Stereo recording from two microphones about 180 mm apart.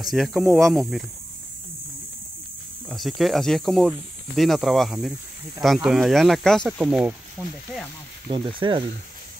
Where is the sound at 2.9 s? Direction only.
Centre (ahead or behind).